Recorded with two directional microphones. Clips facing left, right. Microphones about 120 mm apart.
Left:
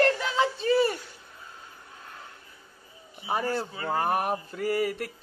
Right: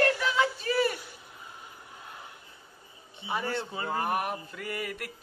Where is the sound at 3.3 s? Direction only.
40° left (ahead or behind).